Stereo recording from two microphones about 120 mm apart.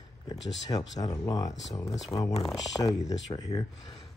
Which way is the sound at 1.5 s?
Centre (ahead or behind).